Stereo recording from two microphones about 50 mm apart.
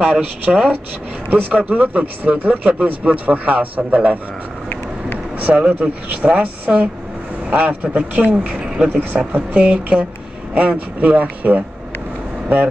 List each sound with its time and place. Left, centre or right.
0.0 s speech: right
5.4 s speech: right